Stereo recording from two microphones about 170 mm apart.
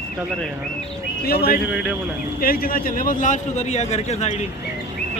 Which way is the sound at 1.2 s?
65° left (ahead or behind).